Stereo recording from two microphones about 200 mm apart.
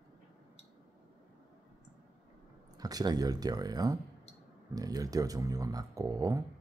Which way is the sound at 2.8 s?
20° right (ahead or behind).